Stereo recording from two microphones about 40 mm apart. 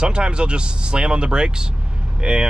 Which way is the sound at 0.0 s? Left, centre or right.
Right.